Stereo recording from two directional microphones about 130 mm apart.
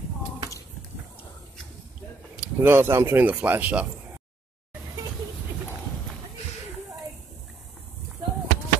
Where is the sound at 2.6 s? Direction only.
20° right (ahead or behind).